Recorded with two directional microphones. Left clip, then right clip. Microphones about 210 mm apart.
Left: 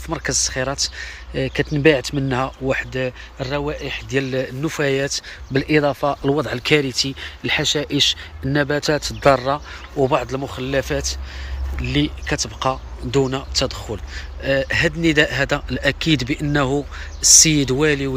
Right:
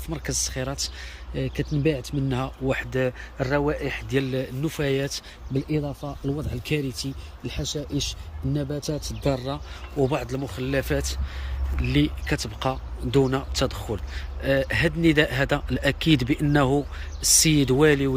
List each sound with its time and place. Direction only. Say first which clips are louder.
0.1 s speech: left 8 dB; 5° right (ahead or behind)
5.9 s speech: left 13 dB; 30° left (ahead or behind)
6.5 s speech: left 11 dB; centre (ahead or behind); by 18.1 s 15° right (ahead or behind)